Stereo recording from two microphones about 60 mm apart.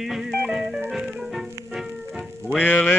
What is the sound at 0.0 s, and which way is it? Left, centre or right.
Music, centre.